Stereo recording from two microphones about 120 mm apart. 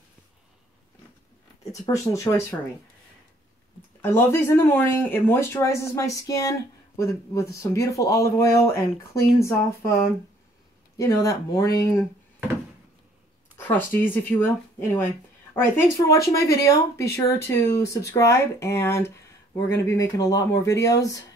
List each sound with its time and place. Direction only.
1.7 s speech: 25° left (ahead or behind)
4.0 s speech: 20° left (ahead or behind)
13.6 s speech: 15° left (ahead or behind)